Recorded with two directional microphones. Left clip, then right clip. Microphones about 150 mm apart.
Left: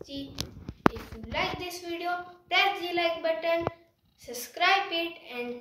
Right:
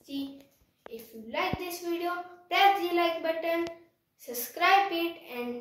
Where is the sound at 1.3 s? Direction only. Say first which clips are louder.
Even; 15° right (ahead or behind).